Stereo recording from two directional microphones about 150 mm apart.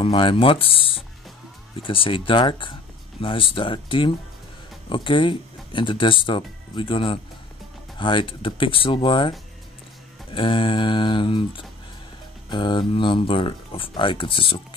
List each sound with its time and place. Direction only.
0.0 s speech: 35° left (ahead or behind)
10.3 s speech: 35° left (ahead or behind)